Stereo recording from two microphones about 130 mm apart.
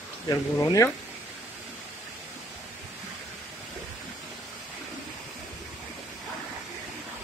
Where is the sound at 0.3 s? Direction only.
30° left (ahead or behind).